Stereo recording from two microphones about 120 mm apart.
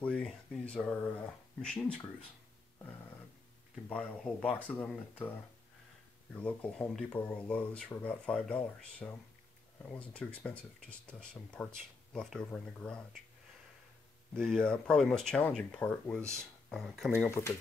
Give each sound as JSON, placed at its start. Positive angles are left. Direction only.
{"t": 0.0, "sound": "speech", "side_deg": 10}
{"t": 3.9, "sound": "speech", "side_deg": 10}
{"t": 6.3, "sound": "speech", "side_deg": 15}
{"t": 14.3, "sound": "speech", "side_deg": 5}
{"t": 17.1, "sound": "speech", "side_deg": 20}